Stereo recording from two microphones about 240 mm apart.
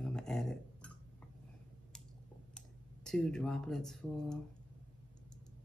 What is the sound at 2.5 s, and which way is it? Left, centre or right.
Speech, centre.